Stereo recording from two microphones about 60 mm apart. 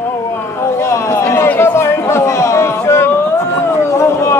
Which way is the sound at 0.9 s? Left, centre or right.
Left.